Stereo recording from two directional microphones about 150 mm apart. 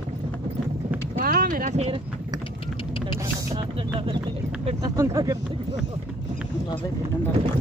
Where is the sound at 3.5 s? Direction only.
30° right (ahead or behind).